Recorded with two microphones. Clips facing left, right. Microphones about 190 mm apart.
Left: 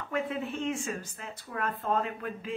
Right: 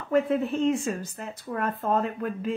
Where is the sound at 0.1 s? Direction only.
40° right (ahead or behind).